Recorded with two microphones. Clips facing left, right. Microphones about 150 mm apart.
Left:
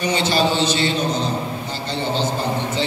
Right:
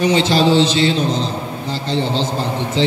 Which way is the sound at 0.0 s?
90° right.